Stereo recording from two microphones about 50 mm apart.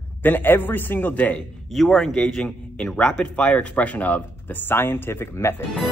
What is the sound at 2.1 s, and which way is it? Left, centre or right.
A man's voice, centre.